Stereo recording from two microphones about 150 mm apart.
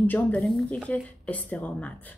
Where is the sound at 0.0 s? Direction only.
10° left (ahead or behind).